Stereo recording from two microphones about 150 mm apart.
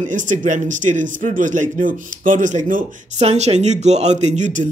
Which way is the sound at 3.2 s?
45° right (ahead or behind).